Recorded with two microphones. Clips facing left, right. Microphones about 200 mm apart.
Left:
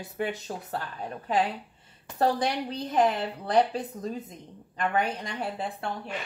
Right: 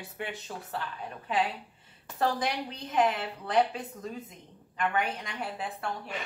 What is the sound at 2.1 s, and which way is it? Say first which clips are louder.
Speech: left 4 dB; 35° left (ahead or behind).